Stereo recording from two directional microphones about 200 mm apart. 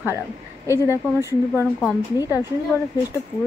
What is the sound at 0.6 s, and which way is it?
Speech, 15° left (ahead or behind).